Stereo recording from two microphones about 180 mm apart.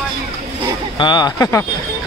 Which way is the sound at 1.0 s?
25° left (ahead or behind).